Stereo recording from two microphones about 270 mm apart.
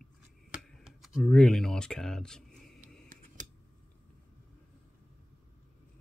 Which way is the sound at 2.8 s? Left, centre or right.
Right.